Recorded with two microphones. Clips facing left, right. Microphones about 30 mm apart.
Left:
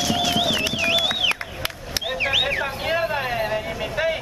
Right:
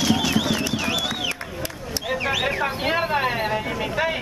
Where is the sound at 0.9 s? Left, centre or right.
Left.